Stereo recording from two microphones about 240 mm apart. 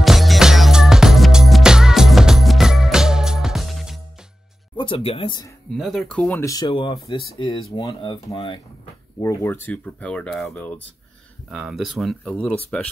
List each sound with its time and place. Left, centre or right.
0.0 s music: centre
4.7 s speech: left
5.7 s speech: centre